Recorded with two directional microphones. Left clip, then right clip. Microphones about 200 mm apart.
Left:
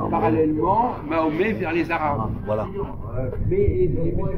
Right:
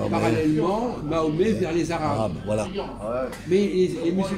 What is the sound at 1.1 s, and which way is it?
A man's voice, 20° right (ahead or behind).